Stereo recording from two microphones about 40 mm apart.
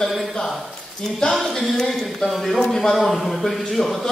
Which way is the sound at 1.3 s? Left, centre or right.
Centre.